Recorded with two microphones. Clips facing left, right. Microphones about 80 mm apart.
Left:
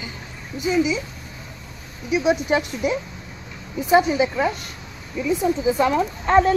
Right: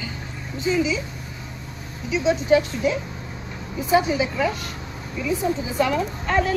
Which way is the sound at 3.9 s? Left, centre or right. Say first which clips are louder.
Left 3 dB; left.